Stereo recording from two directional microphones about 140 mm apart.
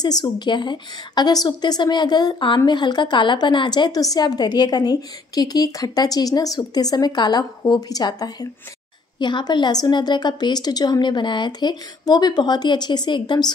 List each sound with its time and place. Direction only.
0.0 s a woman's voice: 30° left (ahead or behind)